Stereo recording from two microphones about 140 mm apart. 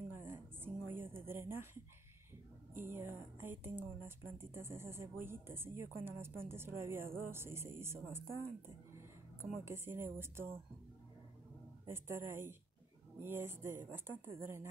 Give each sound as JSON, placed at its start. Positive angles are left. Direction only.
{"t": 0.1, "sound": "music", "side_deg": -15}
{"t": 0.8, "sound": "a sound", "side_deg": -15}
{"t": 2.7, "sound": "a woman's voice", "side_deg": -15}
{"t": 11.9, "sound": "speech", "side_deg": -20}